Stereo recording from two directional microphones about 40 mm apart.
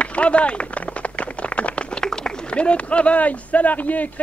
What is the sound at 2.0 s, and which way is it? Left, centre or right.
Speech, centre.